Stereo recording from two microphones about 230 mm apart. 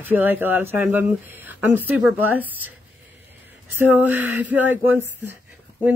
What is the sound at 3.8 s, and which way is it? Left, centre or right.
A woman's voice, centre.